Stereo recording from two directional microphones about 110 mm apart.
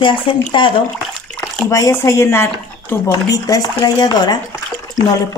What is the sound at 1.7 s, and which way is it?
Speech, 25° left (ahead or behind).